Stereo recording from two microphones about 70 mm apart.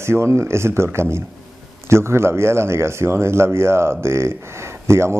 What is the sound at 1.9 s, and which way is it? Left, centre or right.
Speech, right.